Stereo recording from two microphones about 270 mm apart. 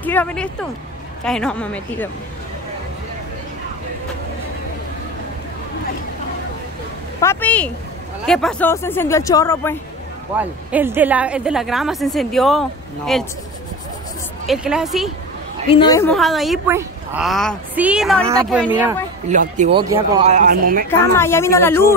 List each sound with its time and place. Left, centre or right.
0.0 s a woman's voice: centre
7.2 s speech: centre
10.3 s a woman's voice: centre
14.4 s a woman's voice: centre
15.7 s a woman's voice: centre
19.2 s speech: right
21.2 s speech: centre